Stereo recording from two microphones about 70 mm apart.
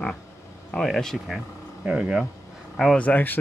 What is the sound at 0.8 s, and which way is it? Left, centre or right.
Speech, centre.